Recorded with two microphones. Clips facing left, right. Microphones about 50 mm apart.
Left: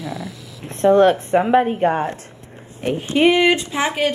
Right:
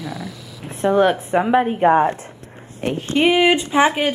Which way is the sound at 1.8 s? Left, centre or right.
Centre.